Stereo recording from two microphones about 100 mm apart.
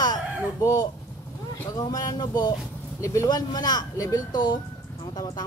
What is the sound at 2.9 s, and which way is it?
Speech, 30° left (ahead or behind).